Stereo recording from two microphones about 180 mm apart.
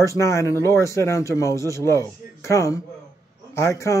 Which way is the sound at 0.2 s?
15° left (ahead or behind).